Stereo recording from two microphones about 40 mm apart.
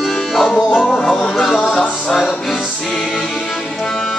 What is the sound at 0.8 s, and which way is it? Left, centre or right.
Speech, centre.